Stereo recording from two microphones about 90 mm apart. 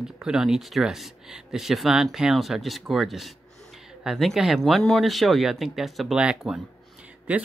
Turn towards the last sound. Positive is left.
turn(degrees=-15)  # may be behind; listen again after turning